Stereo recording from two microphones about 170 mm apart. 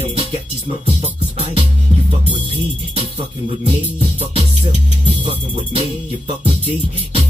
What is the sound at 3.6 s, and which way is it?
Music, 35° right (ahead or behind).